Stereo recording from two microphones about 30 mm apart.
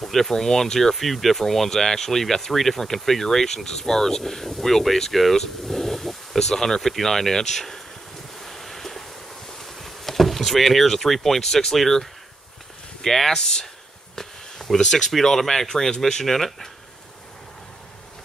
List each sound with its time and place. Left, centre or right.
0.0 s speech: centre
0.9 s speech: centre
8.4 s wind: centre
9.6 s speech: centre
13.4 s speech: left
14.8 s speech: centre
16.3 s speech: centre